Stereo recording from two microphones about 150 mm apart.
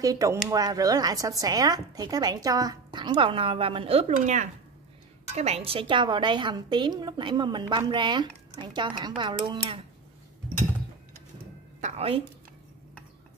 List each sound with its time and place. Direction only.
0.0 s a woman's voice: 20° right (ahead or behind)
11.8 s a woman's voice: 45° right (ahead or behind)